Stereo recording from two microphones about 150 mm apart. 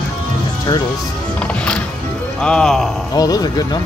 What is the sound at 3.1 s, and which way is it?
Speech, 25° left (ahead or behind).